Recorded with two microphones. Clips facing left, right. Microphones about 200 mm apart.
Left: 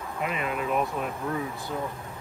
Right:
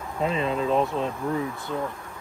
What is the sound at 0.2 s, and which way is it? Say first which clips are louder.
Speech: right 5 dB; 25° right (ahead or behind).